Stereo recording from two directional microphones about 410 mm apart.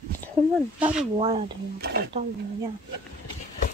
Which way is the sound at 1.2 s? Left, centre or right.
Centre.